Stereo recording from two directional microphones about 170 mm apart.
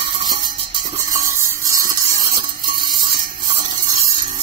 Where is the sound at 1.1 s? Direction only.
20° right (ahead or behind).